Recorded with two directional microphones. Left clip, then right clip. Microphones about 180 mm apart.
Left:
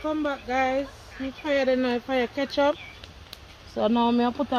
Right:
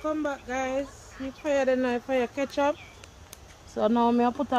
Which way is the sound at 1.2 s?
40° left (ahead or behind).